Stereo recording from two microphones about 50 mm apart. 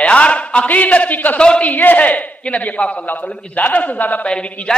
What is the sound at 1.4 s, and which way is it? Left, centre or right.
Speech, centre.